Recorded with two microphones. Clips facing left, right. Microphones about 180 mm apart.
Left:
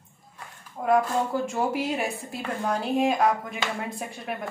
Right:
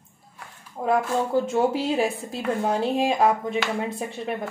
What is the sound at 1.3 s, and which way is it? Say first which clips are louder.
Speech: right 5 dB; 25° right (ahead or behind).